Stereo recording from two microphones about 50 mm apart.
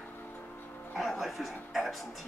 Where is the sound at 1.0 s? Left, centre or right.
Centre.